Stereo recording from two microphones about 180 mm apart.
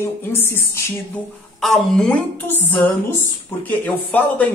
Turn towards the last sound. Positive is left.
turn(degrees=10)  # may be behind; listen again after turning